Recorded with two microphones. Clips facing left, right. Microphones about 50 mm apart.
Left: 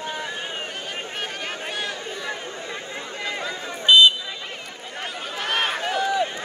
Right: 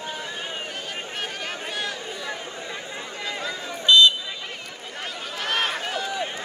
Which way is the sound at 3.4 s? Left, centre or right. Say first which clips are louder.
Left 1 dB; centre.